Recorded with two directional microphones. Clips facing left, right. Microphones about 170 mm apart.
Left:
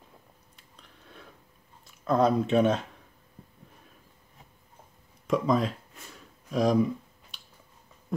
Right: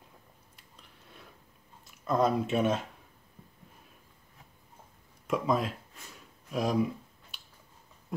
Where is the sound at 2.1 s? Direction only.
5° right (ahead or behind).